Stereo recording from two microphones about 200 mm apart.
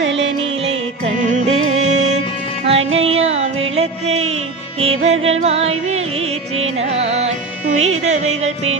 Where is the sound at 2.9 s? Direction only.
80° right.